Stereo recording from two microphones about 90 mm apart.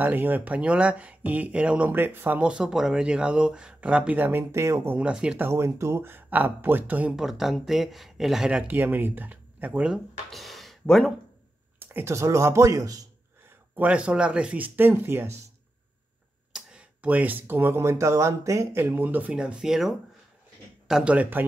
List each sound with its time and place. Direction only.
0.0 s speech: 20° right (ahead or behind)
4.9 s speech: 10° right (ahead or behind)
5.4 s speech: 30° right (ahead or behind)
7.2 s speech: 5° right (ahead or behind)
8.6 s speech: 20° right (ahead or behind)
10.3 s speech: centre (ahead or behind)
11.8 s speech: 25° right (ahead or behind)
13.5 s speech: 15° right (ahead or behind)
16.5 s speech: 15° right (ahead or behind)